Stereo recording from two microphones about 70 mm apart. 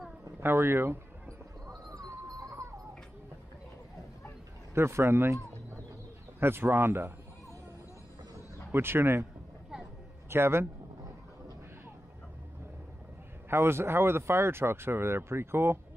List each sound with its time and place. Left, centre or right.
0.4 s speech: right
1.7 s a sound: right
4.7 s speech: right
6.4 s speech: right
8.7 s speech: right
10.3 s speech: right
13.5 s speech: right